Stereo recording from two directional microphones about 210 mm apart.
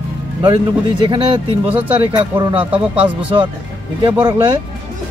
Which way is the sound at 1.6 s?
10° right (ahead or behind).